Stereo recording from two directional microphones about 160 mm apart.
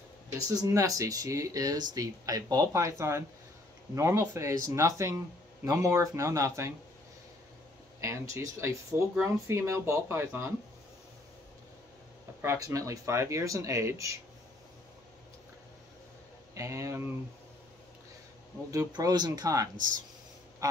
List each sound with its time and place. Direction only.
0.5 s speech: 20° right (ahead or behind)
8.0 s speech: 20° right (ahead or behind)
12.4 s speech: 20° right (ahead or behind)
16.5 s speech: 20° right (ahead or behind)
18.7 s speech: 25° right (ahead or behind)